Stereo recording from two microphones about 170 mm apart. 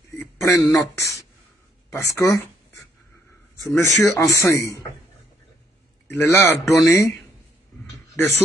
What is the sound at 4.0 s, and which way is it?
Speech, 20° left (ahead or behind).